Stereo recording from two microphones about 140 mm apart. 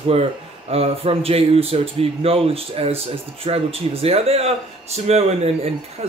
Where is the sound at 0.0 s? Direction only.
45° right (ahead or behind).